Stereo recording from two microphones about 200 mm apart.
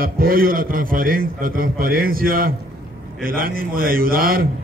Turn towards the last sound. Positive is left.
turn(degrees=-45)  # may be behind; listen again after turning